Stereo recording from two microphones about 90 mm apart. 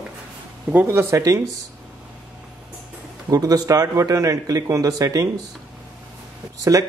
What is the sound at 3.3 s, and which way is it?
A man's voice, 45° right (ahead or behind).